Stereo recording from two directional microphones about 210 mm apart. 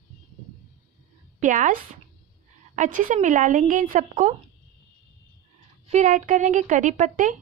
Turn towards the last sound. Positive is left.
turn(degrees=-35)  # may be behind; listen again after turning